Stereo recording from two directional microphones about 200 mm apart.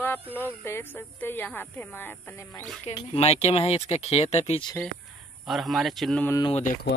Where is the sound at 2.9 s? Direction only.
30° left (ahead or behind).